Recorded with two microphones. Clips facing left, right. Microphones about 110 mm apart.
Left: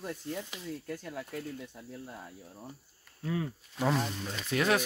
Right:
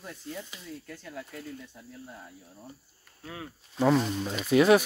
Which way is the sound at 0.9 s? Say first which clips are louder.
Left 2 dB; 5° left (ahead or behind).